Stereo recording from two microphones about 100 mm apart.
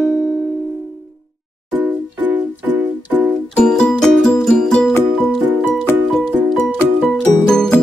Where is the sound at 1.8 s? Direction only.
15° right (ahead or behind).